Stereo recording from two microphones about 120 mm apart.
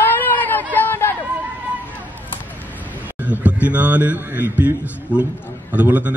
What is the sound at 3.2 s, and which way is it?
A man's voice, 15° right (ahead or behind).